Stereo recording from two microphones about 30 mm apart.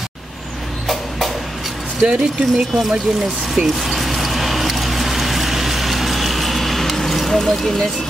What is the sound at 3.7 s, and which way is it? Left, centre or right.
Vehicle, centre.